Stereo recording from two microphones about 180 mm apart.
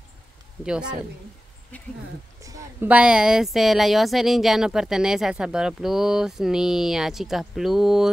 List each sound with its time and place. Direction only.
0.7 s speech: 5° right (ahead or behind)
1.7 s speech: 10° left (ahead or behind)
2.4 s speech: 20° right (ahead or behind)
2.9 s speech: 5° right (ahead or behind)